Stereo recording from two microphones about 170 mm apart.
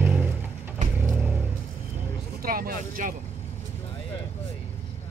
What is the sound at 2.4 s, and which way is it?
Vehicle, 60° right (ahead or behind).